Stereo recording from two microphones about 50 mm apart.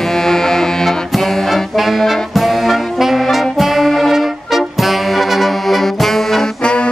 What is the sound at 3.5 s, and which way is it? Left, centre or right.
Brass instrument, centre.